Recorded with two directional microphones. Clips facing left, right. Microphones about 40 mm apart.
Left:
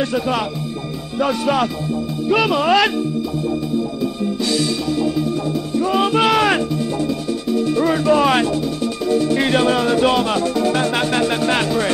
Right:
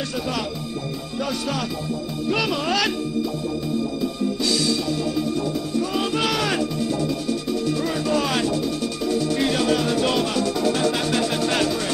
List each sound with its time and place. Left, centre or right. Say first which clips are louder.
0.0 s music: left 7 dB; left
2.2 s speech: left 7 dB; left
5.8 s music: left 8 dB; left
7.7 s music: left 9 dB; left